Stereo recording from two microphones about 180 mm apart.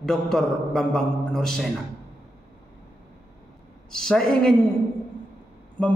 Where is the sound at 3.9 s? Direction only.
5° left (ahead or behind).